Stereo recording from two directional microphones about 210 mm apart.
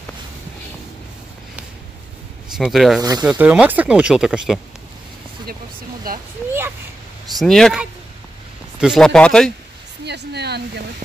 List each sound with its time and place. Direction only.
2.5 s speech: centre (ahead or behind)
3.0 s speech: 20° right (ahead or behind)
3.3 s speech: 5° right (ahead or behind)
7.3 s speech: centre (ahead or behind)
10.0 s speech: 50° right (ahead or behind)